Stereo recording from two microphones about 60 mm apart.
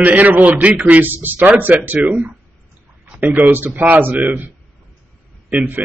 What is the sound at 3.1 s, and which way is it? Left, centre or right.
Speech, right.